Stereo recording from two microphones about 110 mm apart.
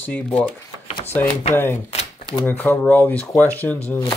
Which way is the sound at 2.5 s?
15° left (ahead or behind).